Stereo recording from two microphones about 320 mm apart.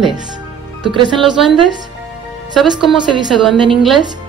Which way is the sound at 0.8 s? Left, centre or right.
Centre.